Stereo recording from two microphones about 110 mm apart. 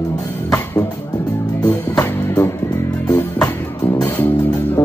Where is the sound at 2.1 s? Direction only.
20° left (ahead or behind).